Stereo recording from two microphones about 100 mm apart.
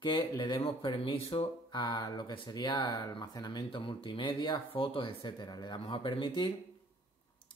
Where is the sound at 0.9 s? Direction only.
65° left (ahead or behind).